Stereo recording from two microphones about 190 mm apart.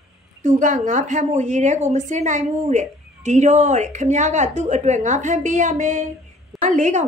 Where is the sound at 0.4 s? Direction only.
40° right (ahead or behind).